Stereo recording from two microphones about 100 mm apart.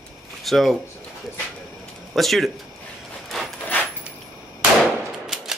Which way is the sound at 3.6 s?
20° left (ahead or behind).